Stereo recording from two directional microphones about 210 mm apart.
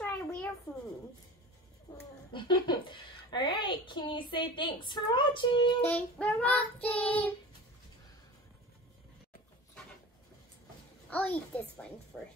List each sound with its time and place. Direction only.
0.0 s a sound: 5° left (ahead or behind)
1.9 s a woman's voice: 20° left (ahead or behind)
5.8 s child singing: 10° left (ahead or behind)
11.1 s child singing: 5° left (ahead or behind)